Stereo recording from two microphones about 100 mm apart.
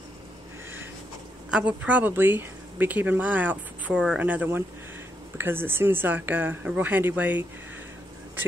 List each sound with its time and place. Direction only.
1.5 s speech: 15° right (ahead or behind)